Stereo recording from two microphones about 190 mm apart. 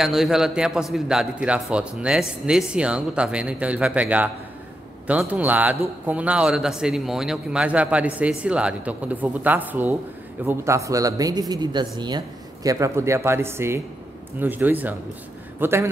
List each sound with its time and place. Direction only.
0.0 s a man's voice: centre (ahead or behind)